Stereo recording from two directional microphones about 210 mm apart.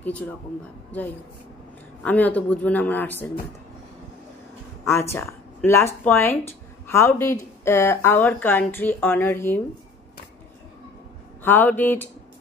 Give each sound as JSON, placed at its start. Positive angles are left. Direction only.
{"t": 0.0, "sound": "a woman's voice", "side_deg": 5}
{"t": 2.0, "sound": "a woman's voice", "side_deg": 5}
{"t": 4.8, "sound": "a woman's voice", "side_deg": 10}
{"t": 11.4, "sound": "a woman's voice", "side_deg": 10}